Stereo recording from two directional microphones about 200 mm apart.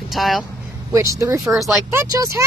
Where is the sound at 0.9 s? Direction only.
15° right (ahead or behind).